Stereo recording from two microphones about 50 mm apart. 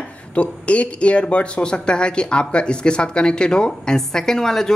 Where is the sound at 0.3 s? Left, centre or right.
Left.